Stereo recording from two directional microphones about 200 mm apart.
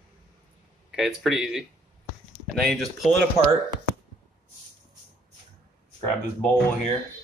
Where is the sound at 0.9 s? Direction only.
5° right (ahead or behind).